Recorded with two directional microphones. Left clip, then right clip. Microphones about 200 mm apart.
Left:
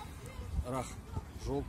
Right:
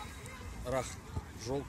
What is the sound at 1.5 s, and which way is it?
Speech, 45° left (ahead or behind).